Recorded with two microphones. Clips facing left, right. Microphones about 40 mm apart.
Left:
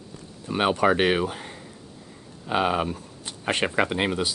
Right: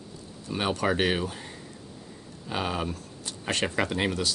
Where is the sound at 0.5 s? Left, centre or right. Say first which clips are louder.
Left 6 dB; left.